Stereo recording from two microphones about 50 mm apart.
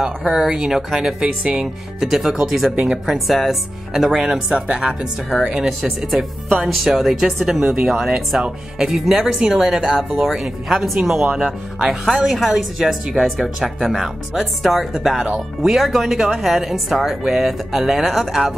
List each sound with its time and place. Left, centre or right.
0.0 s speech: centre
2.7 s speech: right
3.1 s speech: centre